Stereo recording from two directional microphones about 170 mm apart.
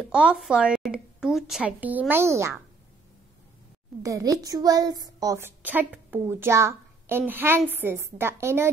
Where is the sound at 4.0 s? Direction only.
20° right (ahead or behind).